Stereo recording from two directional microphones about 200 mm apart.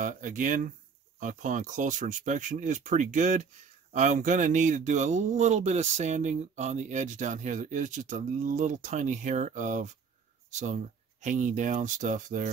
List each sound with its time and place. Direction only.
0.0 s speech: 40° right (ahead or behind)